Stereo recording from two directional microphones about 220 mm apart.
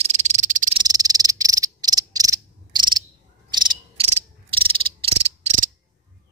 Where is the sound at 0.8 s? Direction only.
15° right (ahead or behind).